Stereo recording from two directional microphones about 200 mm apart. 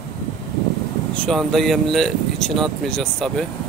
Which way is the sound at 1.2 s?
Centre (ahead or behind).